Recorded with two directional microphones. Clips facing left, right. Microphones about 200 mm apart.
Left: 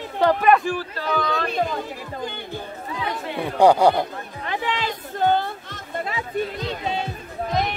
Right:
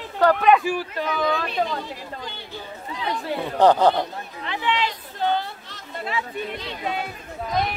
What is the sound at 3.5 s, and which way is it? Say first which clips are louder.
Speech: left 1 dB; 10° left (ahead or behind).